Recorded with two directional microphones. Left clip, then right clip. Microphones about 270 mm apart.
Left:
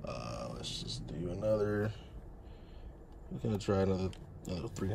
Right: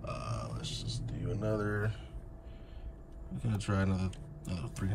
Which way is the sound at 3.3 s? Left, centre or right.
Centre.